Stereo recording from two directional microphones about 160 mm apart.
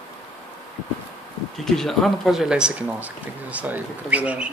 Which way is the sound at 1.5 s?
5° left (ahead or behind).